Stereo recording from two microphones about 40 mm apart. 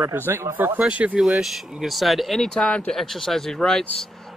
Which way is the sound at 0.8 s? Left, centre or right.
Right.